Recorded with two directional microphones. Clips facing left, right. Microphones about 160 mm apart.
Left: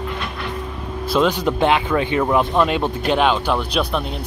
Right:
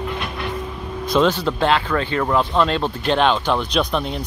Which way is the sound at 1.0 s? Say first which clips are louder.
Even; 5° left (ahead or behind).